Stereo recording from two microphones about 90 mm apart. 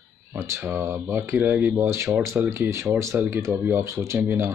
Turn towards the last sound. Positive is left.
turn(degrees=-30)  # may be behind; listen again after turning